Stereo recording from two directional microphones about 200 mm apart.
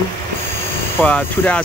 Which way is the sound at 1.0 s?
10° left (ahead or behind).